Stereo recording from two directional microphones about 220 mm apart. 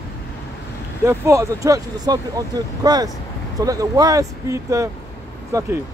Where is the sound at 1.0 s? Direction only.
15° right (ahead or behind).